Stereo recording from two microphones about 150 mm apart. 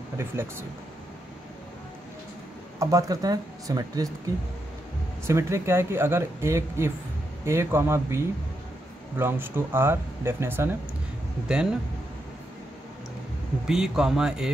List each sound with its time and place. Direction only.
0.2 s speech: 15° right (ahead or behind)
2.8 s speech: 20° right (ahead or behind)
5.2 s speech: 20° right (ahead or behind)
13.7 s speech: 5° right (ahead or behind)